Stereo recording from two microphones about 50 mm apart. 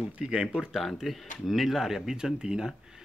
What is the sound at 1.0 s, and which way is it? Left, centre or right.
Speech, centre.